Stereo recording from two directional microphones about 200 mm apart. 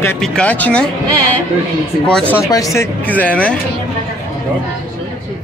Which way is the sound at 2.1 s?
5° left (ahead or behind).